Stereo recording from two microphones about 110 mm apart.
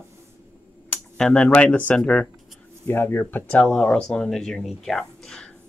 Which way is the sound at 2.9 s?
20° left (ahead or behind).